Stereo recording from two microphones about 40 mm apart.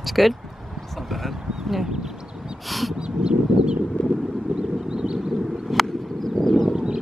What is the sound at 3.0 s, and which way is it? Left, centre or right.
Crow, right.